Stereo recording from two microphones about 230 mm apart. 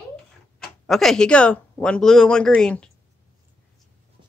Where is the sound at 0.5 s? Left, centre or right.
Centre.